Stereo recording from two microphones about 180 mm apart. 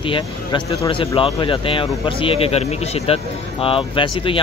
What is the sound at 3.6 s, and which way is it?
Speech, 30° left (ahead or behind).